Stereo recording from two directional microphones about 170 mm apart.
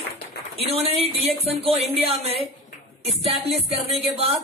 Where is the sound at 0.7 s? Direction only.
35° right (ahead or behind).